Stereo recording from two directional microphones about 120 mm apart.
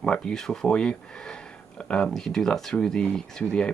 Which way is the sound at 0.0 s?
5° left (ahead or behind).